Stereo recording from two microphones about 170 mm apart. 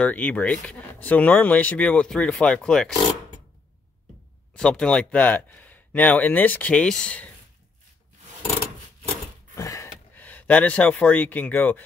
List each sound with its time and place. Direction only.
0.0 s speech: 10° left (ahead or behind)
4.6 s speech: 5° left (ahead or behind)
9.6 s a sound: 20° left (ahead or behind)